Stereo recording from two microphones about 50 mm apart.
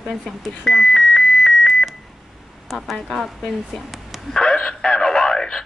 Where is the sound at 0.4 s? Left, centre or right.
Centre.